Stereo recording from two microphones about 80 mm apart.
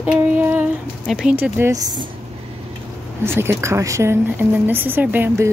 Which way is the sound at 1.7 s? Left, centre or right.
Right.